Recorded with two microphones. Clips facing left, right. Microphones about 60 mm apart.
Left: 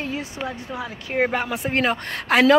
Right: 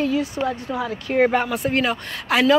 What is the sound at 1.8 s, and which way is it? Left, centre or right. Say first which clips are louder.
Speech: even; left.